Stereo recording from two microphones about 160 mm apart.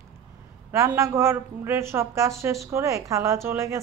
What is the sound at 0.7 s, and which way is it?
A woman's voice, 15° right (ahead or behind).